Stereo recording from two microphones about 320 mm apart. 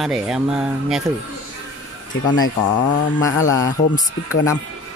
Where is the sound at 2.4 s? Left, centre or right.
Left.